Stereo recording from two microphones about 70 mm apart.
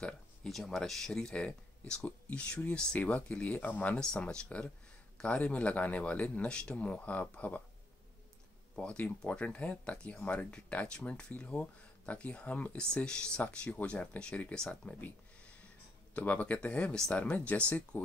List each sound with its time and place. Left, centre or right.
0.5 s speech: centre; by 4.0 s left
4.0 s speech: centre
8.7 s speech: centre
14.7 s a sound: left
16.2 s speech: left